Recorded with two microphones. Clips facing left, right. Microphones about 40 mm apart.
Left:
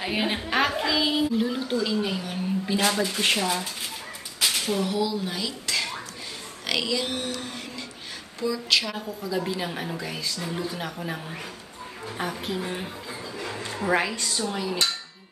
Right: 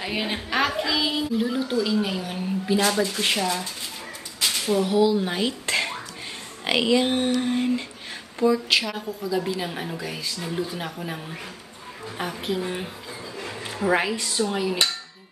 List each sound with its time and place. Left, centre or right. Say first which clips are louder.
0.0 s a woman's voice: left 1 dB; centre
4.4 s a sound: right 2 dB; centre
4.8 s speech: right 6 dB; centre
5.3 s a sound: right 5 dB; right
6.6 s speech: right 6 dB; right
8.8 s a woman's voice: right 2 dB; centre
12.2 s a woman's voice: right 2 dB; centre
14.5 s dishes: right 4 dB; centre